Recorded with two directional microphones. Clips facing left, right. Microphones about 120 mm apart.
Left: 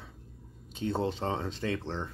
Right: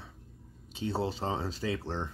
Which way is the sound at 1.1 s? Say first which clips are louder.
Left 1 dB; 35° right (ahead or behind).